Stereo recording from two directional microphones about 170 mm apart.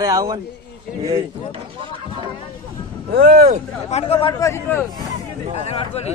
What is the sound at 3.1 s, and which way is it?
Speech, 60° right (ahead or behind).